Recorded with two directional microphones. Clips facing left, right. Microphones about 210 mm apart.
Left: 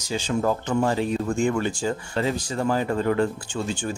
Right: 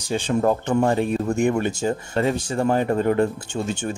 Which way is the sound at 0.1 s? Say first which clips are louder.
Right 3 dB; 45° right (ahead or behind).